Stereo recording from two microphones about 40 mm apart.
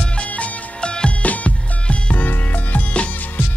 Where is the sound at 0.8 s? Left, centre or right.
Left.